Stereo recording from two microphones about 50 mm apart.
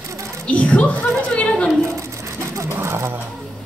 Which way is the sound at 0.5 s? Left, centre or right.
Left.